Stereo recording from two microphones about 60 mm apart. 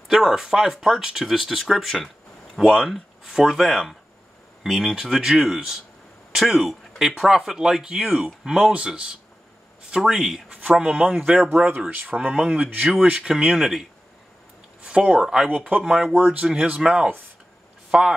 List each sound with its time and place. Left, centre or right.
0.1 s speech: centre
3.3 s speech: centre
8.7 s speech: centre
10.5 s speech: centre
11.9 s speech: right; by 13.8 s centre
14.8 s speech: centre